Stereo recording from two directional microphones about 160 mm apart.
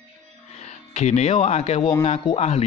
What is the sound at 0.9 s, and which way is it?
Speech, 45° left (ahead or behind).